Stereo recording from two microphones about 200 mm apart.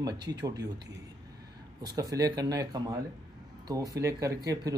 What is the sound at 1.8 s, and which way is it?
A man's voice, 20° right (ahead or behind).